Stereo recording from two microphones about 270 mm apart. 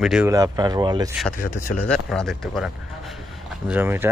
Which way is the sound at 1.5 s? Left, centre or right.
Left.